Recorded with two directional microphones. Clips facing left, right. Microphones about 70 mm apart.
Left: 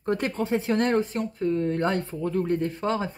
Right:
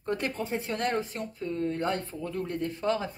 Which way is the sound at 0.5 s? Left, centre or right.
Left.